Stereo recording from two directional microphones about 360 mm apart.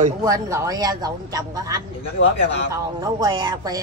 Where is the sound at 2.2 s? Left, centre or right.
Left.